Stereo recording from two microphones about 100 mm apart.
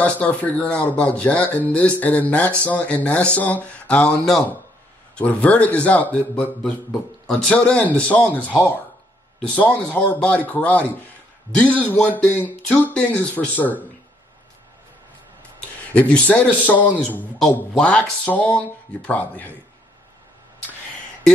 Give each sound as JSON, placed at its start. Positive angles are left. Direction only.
{"t": 0.0, "sound": "speech", "side_deg": 15}
{"t": 15.9, "sound": "speech", "side_deg": 10}